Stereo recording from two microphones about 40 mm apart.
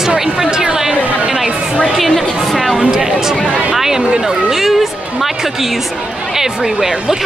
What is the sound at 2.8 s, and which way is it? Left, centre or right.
Speech, centre.